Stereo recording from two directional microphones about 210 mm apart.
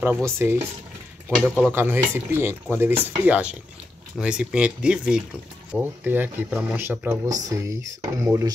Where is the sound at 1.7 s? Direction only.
10° right (ahead or behind).